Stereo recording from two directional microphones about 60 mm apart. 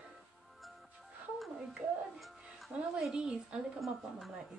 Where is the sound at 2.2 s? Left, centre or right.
Centre.